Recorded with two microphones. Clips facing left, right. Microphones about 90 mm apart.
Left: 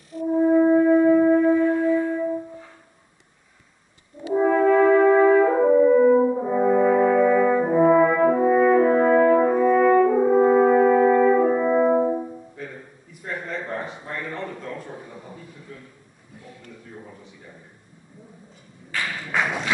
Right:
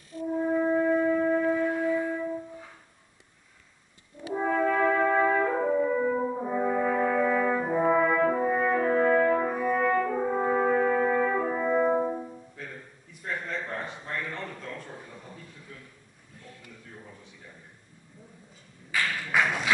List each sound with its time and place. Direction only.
0.4 s wind instrument: 15° left (ahead or behind)
4.4 s brass instrument: 5° left (ahead or behind)
9.8 s french horn: 10° left (ahead or behind)
12.5 s a sound: 5° left (ahead or behind)
16.9 s a sound: 15° left (ahead or behind)
18.9 s thump: 5° left (ahead or behind)